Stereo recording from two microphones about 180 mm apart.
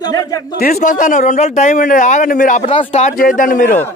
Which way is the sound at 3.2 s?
50° left (ahead or behind).